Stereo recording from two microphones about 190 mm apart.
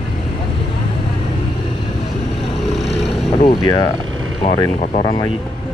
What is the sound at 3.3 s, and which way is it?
Boat, 25° left (ahead or behind).